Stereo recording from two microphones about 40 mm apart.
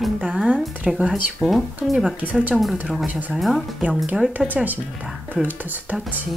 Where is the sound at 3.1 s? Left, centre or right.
Right.